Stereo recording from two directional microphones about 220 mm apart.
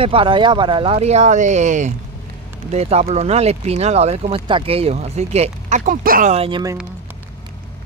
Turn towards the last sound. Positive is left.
turn(degrees=-20)  # may be behind; listen again after turning